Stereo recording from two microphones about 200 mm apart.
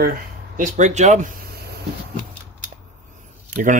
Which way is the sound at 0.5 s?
40° right (ahead or behind).